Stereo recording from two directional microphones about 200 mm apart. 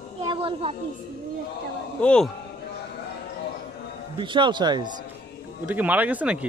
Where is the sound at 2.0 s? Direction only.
5° left (ahead or behind).